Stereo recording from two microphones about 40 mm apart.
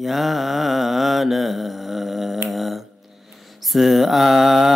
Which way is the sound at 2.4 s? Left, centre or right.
Centre.